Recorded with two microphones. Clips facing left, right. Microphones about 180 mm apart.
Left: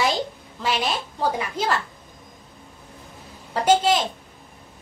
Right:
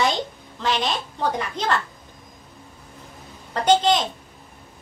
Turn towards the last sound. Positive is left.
turn(degrees=5)  # may be behind; listen again after turning